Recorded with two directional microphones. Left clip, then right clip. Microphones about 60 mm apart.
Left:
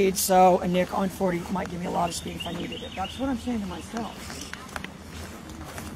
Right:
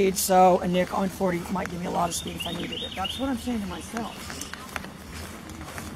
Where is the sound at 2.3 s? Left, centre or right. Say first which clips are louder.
Right 2 dB; right.